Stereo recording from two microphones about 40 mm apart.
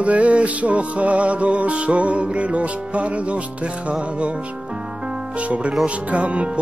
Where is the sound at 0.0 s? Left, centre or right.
Right.